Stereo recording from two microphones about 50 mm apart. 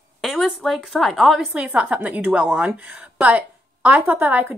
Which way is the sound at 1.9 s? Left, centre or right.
Right.